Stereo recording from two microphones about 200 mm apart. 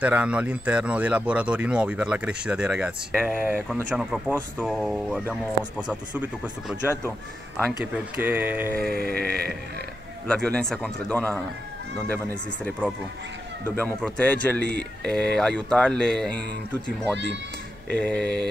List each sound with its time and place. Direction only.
0.0 s speech: 5° right (ahead or behind)
7.8 s speech: 10° right (ahead or behind)
8.9 s sheep: 50° right (ahead or behind)
10.2 s speech: 5° left (ahead or behind)
14.6 s sheep: 55° right (ahead or behind)
15.0 s speech: 5° left (ahead or behind)